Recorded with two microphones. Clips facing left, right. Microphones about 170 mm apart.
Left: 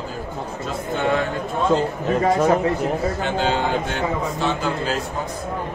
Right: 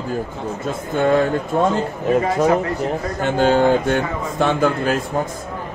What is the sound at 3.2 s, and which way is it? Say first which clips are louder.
A man's voice: right 11 dB; 50° right (ahead or behind).